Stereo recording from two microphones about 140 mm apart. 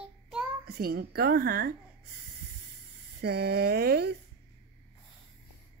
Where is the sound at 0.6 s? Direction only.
90° right.